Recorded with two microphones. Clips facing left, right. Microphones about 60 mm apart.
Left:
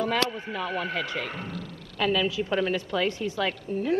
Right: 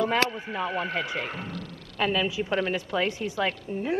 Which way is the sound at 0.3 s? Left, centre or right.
Centre.